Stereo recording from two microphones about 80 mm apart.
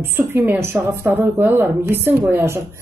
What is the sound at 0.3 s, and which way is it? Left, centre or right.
A woman's voice, right.